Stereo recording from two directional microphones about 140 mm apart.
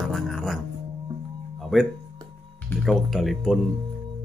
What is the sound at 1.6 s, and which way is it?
Music, centre (ahead or behind).